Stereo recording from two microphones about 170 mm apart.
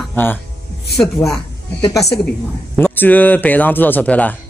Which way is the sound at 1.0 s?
Centre (ahead or behind).